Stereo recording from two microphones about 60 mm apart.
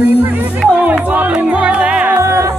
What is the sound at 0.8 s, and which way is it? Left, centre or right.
Music, right.